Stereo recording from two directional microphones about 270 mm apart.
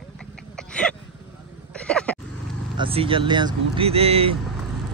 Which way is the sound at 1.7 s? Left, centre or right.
Centre.